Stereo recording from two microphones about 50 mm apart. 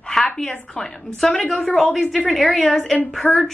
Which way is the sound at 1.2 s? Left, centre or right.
Centre.